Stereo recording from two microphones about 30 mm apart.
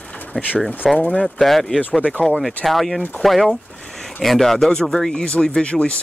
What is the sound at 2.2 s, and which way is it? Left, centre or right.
Speech, left.